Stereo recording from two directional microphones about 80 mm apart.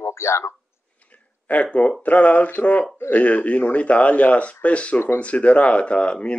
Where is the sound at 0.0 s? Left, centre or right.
Left.